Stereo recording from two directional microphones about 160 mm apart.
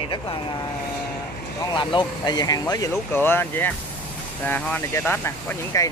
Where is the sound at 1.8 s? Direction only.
30° left (ahead or behind).